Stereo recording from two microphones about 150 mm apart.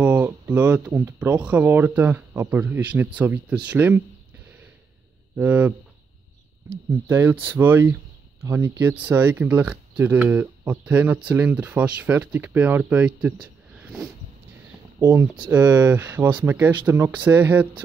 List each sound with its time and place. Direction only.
0.0 s speech: 10° right (ahead or behind)
5.3 s speech: 10° right (ahead or behind)
6.9 s speech: 15° right (ahead or behind)
13.7 s vehicle: 5° right (ahead or behind)
15.0 s speech: 30° right (ahead or behind)
15.5 s speech: 10° right (ahead or behind)